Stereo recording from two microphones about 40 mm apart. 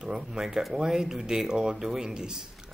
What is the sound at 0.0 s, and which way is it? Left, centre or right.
Speech, centre.